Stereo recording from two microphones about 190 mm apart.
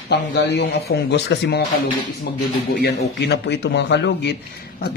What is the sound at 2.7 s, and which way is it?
Speech, 60° left (ahead or behind).